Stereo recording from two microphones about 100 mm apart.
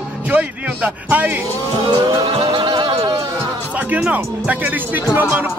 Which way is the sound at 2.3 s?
55° right (ahead or behind).